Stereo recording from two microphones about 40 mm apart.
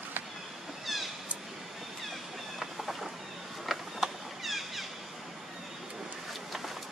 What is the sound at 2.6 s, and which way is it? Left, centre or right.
Vehicle, centre.